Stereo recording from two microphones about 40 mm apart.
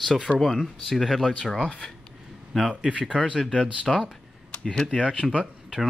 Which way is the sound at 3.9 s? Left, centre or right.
Centre.